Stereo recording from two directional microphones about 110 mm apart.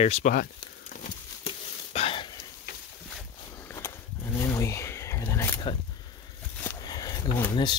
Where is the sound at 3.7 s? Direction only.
25° left (ahead or behind).